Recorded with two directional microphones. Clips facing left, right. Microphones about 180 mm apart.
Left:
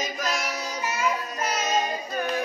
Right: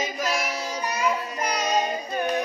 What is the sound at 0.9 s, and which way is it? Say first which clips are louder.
Child singing: right 2 dB; 15° right (ahead or behind).